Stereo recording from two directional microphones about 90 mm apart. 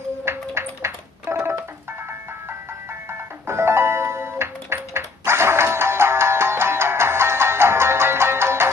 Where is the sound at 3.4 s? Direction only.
30° right (ahead or behind).